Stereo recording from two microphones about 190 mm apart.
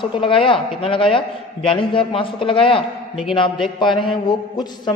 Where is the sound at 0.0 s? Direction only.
25° left (ahead or behind).